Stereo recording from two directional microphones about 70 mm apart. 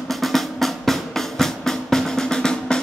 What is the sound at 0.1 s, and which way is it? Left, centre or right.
Music, centre.